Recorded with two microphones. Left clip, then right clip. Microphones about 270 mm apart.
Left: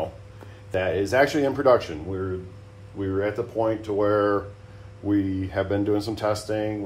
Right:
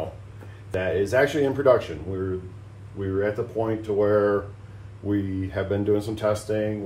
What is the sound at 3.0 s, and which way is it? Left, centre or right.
Speech, left.